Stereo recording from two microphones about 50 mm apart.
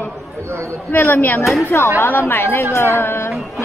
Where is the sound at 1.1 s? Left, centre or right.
Left.